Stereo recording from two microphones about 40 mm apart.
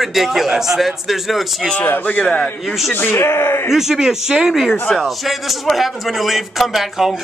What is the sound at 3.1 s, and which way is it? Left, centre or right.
Speech, left.